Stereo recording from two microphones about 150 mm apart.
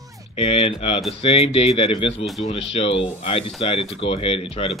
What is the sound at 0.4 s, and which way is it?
Speech, 40° left (ahead or behind).